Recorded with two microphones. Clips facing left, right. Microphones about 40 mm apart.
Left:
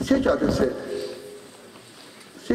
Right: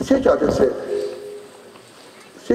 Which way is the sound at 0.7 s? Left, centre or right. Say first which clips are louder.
Right 6 dB; centre.